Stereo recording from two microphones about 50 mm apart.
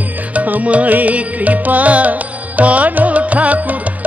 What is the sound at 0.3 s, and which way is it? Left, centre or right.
Music, right.